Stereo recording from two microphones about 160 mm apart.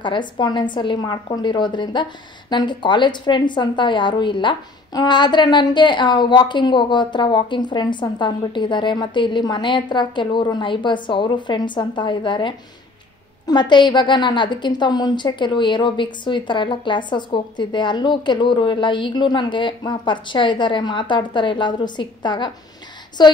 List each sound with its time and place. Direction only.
0.0 s a woman's voice: 30° left (ahead or behind)